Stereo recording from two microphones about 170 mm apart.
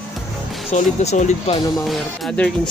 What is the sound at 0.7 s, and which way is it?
Speech, 40° left (ahead or behind).